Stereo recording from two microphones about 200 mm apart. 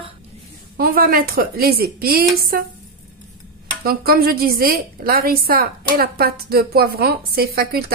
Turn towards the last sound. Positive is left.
turn(degrees=-50)  # may be behind; listen again after turning